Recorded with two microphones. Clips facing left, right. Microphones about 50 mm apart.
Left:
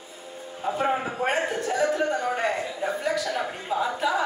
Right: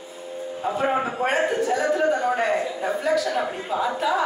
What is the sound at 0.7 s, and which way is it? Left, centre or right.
A man's voice, centre.